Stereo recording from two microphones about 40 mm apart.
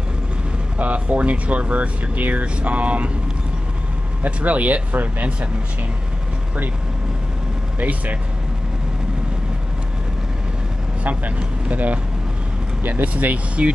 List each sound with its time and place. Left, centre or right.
0.7 s speech: right
4.2 s speech: right
11.7 s speech: right